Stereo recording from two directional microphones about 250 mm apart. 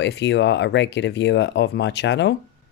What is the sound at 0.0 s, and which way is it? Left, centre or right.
Speech, left.